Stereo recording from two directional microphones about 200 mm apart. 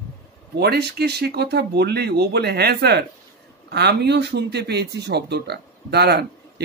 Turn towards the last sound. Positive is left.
turn(degrees=-55)  # may be behind; listen again after turning